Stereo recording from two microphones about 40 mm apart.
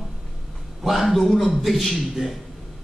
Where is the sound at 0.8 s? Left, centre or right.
Centre.